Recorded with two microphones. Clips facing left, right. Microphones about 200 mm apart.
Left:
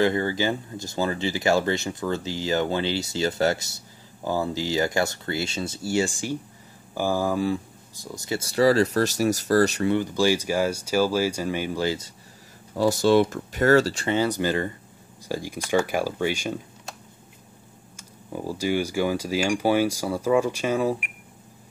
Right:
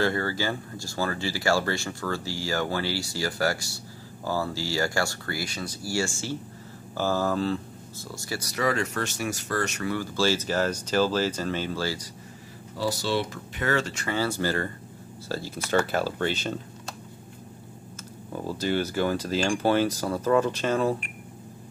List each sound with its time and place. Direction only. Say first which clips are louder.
0.0 s speech: left 4 dB; 20° left (ahead or behind)
9.9 s speech: even; 15° left (ahead or behind)
12.7 s speech: left 8 dB; 50° left (ahead or behind)
14.0 s speech: left 4 dB; 20° left (ahead or behind)
18.3 s speech: left 2 dB; 10° left (ahead or behind)